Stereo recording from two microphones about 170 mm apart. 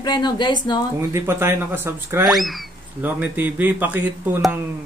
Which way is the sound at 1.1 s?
15° right (ahead or behind).